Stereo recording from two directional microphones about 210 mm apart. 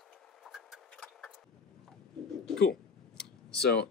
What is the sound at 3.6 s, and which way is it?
Speech, 50° left (ahead or behind).